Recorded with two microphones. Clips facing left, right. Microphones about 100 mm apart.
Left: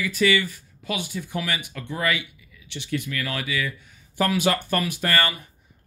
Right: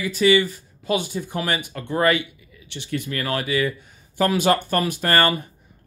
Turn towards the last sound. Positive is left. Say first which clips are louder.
# right 5 dB
turn(degrees=-40)  # may be behind; listen again after turning